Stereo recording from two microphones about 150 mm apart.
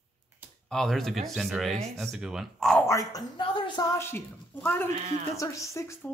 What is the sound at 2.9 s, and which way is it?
Speech, 25° left (ahead or behind).